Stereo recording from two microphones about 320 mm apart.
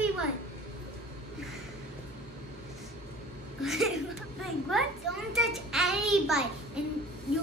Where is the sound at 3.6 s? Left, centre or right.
Centre.